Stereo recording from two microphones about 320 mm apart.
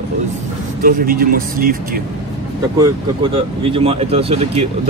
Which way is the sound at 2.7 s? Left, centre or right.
Centre.